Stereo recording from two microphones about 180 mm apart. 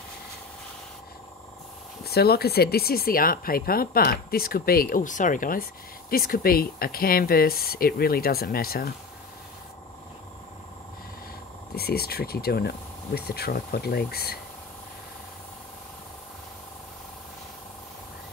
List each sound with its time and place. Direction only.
2.0 s speech: 60° left (ahead or behind)
11.7 s speech: 60° left (ahead or behind)